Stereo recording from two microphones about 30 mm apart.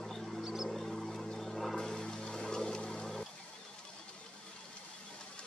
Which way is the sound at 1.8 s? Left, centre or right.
Centre.